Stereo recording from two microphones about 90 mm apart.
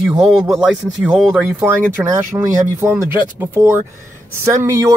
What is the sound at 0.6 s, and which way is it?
Speech, 15° right (ahead or behind).